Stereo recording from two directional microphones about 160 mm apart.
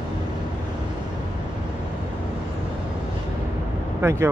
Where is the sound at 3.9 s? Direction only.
15° right (ahead or behind).